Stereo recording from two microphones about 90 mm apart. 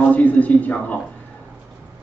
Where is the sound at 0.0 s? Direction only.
15° left (ahead or behind).